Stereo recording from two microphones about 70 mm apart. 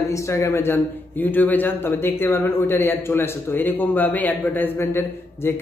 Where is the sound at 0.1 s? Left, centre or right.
Left.